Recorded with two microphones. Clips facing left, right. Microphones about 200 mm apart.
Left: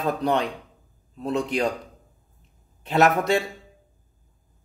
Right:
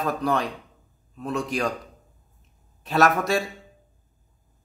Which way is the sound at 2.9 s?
20° left (ahead or behind).